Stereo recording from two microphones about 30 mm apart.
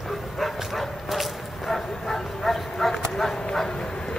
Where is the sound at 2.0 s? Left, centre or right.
Centre.